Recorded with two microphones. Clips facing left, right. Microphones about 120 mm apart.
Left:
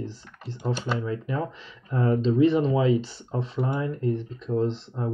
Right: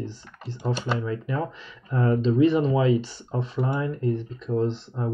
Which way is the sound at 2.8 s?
30° left (ahead or behind).